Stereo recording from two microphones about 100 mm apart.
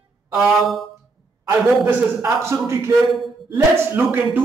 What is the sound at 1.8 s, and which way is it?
Speech, 25° right (ahead or behind).